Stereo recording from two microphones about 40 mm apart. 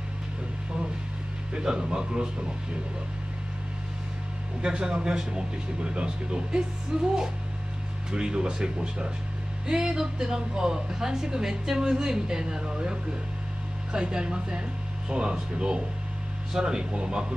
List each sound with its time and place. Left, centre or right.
1.5 s a man's voice: centre
4.6 s a man's voice: right